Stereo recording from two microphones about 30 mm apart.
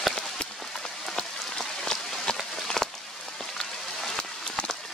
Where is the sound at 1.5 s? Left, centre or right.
Centre.